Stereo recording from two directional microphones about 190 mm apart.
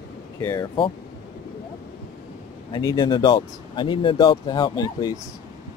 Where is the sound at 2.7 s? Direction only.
20° left (ahead or behind).